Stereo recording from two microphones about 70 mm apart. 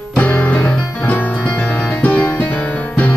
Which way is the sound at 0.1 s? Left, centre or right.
Centre.